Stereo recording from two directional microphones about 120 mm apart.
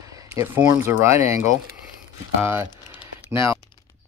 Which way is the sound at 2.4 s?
20° right (ahead or behind).